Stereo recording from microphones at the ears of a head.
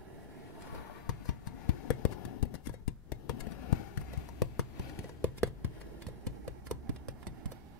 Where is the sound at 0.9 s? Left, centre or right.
Left.